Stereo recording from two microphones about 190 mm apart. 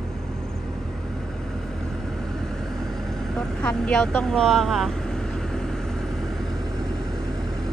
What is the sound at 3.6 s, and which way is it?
Speech, 5° left (ahead or behind).